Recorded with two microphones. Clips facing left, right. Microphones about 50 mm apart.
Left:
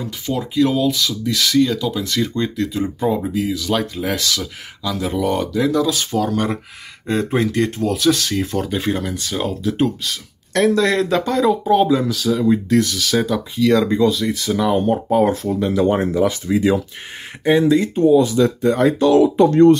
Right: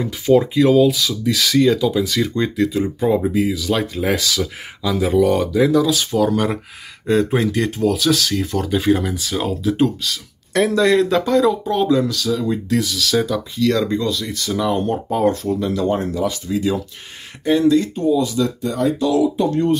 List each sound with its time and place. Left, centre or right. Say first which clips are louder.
0.6 s speech: right 3 dB; centre
7.1 s speech: right 2 dB; centre
15.6 s speech: left 5 dB; left
17.5 s speech: left 1 dB; left
18.0 s speech: left 4 dB; left